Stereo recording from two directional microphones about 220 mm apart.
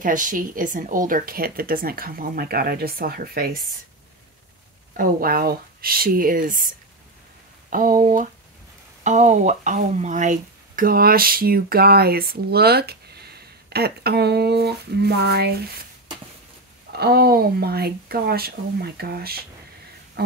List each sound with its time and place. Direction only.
0.0 s speech: 35° right (ahead or behind)
4.9 s speech: 40° right (ahead or behind)
7.7 s speech: 40° right (ahead or behind)
16.9 s speech: 45° right (ahead or behind)
20.2 s a sound: 45° right (ahead or behind)